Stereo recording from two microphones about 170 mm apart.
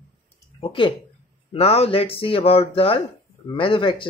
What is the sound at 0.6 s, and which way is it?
Speech, 30° left (ahead or behind).